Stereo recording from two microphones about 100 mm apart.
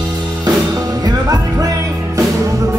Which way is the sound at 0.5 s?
40° right (ahead or behind).